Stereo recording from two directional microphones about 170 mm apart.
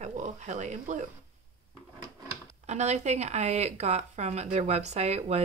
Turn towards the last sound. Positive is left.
turn(degrees=-40)  # may be behind; listen again after turning